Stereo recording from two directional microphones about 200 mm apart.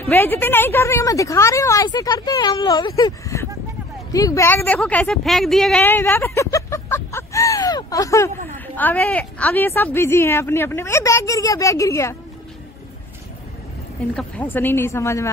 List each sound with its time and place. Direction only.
0.0 s a woman's voice: 10° left (ahead or behind)
14.1 s a woman's voice: 5° left (ahead or behind)